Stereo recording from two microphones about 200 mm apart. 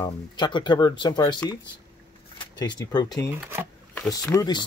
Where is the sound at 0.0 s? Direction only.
20° left (ahead or behind).